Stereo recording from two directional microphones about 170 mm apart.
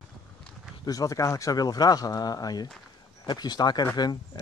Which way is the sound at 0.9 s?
20° left (ahead or behind).